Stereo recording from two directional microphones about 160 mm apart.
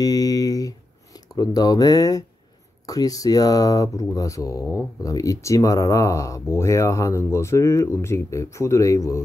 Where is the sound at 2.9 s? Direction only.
20° left (ahead or behind).